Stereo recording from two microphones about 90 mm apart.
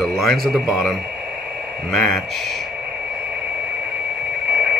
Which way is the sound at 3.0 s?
15° right (ahead or behind).